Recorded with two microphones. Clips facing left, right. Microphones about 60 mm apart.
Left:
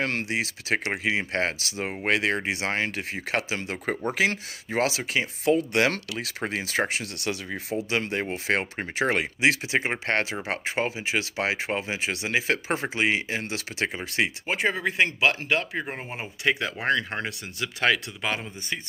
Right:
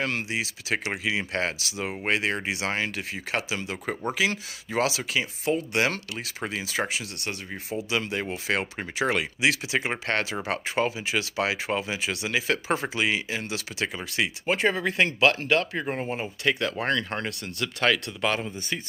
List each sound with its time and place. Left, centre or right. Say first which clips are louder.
0.0 s speech: left 1 dB; left
2.5 s speech: left 1 dB; left
5.4 s speech: left 4 dB; left
6.4 s speech: left 2 dB; left
14.4 s speech: right 1 dB; centre